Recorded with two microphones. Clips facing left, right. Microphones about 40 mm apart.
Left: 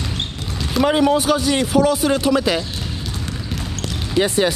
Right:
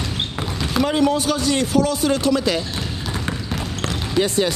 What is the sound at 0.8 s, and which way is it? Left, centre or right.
Speech, left.